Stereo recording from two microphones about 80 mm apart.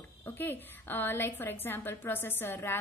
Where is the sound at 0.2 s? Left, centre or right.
Left.